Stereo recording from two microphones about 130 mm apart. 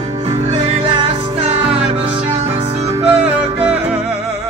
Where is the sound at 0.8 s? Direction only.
40° right (ahead or behind).